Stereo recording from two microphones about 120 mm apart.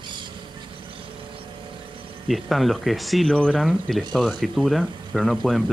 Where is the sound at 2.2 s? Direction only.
Centre (ahead or behind).